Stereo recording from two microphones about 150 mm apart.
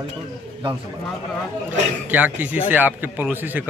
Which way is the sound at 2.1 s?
10° right (ahead or behind).